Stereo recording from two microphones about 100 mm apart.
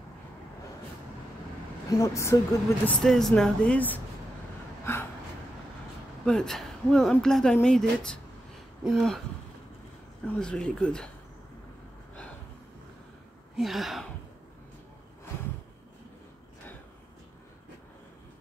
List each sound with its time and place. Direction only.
1.9 s a woman's voice: 35° left (ahead or behind)
2.9 s speech: 5° left (ahead or behind)
6.2 s speech: 5° left (ahead or behind)
10.2 s speech: 10° left (ahead or behind)
13.6 s speech: centre (ahead or behind)